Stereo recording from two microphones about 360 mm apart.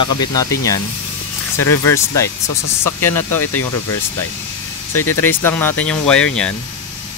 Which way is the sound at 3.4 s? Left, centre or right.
Left.